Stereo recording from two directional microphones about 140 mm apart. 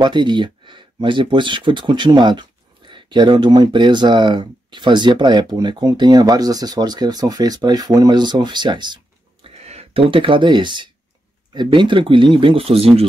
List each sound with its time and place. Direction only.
0.0 s speech: 35° right (ahead or behind)
9.6 s speech: 50° right (ahead or behind)